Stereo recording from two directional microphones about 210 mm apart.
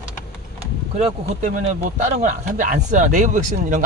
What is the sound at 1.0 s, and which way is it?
Speech, 30° right (ahead or behind).